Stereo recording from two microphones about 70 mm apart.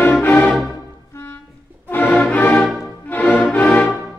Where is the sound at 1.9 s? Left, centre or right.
Left.